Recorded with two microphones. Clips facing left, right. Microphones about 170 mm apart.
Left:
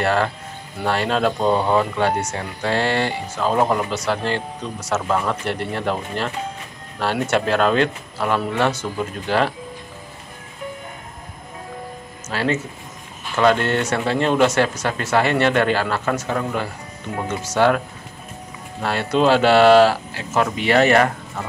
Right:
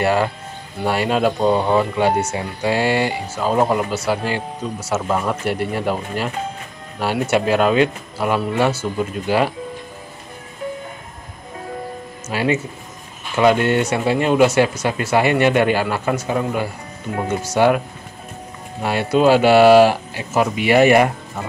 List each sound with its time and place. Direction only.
0.0 s speech: 10° right (ahead or behind)
12.3 s speech: 10° right (ahead or behind)